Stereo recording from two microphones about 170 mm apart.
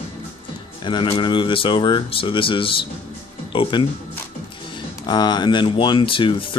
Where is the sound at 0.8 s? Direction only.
30° left (ahead or behind).